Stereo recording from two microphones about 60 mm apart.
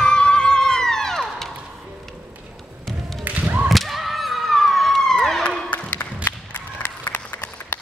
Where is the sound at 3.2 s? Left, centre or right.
Right.